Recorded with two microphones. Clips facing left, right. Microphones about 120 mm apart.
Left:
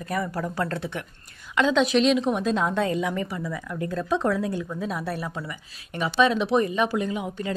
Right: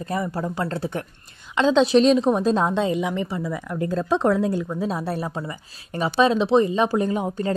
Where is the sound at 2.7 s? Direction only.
20° right (ahead or behind).